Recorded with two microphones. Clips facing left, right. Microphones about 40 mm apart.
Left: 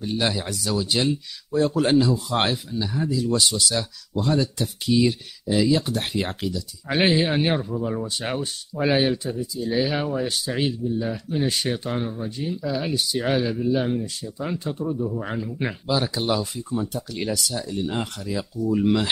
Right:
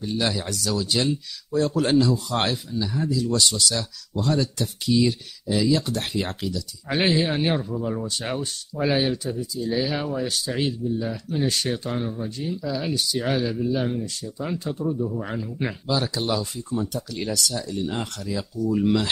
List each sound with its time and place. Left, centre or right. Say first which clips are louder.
0.0 s speech: left 1 dB; centre
14.9 s speech: right 1 dB; centre